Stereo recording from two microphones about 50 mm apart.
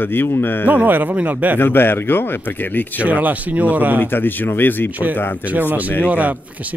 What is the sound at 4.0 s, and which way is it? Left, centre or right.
Speech, left.